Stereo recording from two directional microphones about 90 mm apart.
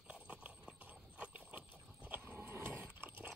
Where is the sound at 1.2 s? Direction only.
15° right (ahead or behind).